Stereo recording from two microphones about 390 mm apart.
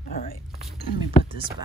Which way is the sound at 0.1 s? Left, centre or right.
Left.